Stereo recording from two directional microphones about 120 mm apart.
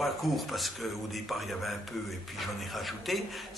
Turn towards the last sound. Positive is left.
turn(degrees=0)  # may be behind; listen again after turning